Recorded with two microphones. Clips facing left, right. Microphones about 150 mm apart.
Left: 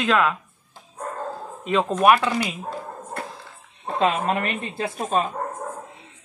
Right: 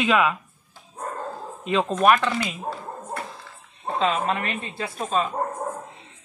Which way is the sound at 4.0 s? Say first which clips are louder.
Left 2 dB; 50° left (ahead or behind).